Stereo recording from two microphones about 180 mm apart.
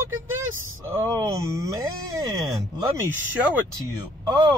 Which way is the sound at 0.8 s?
15° right (ahead or behind).